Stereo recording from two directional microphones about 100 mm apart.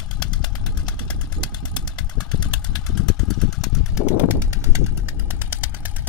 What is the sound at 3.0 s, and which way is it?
Vehicle, 5° left (ahead or behind).